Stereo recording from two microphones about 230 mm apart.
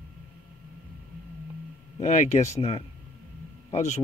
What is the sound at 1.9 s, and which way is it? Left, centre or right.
Speech, left.